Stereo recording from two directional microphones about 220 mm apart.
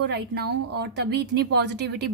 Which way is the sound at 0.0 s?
50° right (ahead or behind).